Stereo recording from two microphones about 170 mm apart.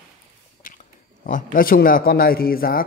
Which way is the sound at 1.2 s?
50° left (ahead or behind).